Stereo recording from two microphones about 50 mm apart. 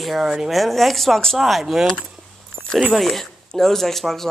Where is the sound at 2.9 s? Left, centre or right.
Centre.